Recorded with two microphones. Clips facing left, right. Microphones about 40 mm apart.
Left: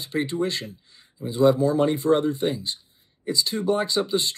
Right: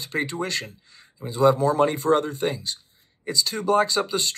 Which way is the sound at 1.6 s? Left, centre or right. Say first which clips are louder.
Even; right.